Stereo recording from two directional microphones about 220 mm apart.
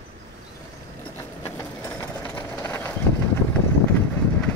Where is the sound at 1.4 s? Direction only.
15° left (ahead or behind).